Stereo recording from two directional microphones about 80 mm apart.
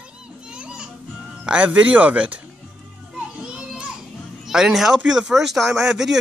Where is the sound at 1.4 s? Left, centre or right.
Centre.